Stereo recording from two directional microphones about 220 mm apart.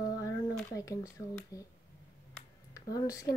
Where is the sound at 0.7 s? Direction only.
15° left (ahead or behind).